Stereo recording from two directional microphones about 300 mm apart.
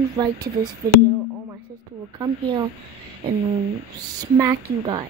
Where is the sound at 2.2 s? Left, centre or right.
Centre.